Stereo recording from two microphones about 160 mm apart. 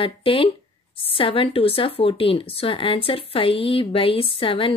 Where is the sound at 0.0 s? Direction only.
35° left (ahead or behind).